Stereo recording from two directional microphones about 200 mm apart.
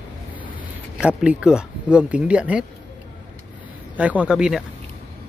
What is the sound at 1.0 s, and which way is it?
Speech, 5° right (ahead or behind).